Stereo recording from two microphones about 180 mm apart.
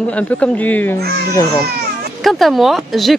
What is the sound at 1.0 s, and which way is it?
Speech, 65° right (ahead or behind).